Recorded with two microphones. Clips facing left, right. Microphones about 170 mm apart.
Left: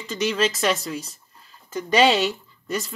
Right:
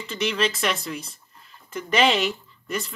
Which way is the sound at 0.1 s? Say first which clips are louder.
Left 2 dB; 40° left (ahead or behind).